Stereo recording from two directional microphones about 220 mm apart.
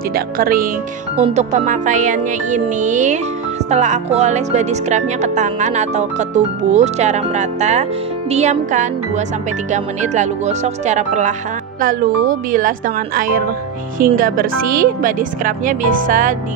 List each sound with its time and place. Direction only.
0.1 s speech: 40° right (ahead or behind)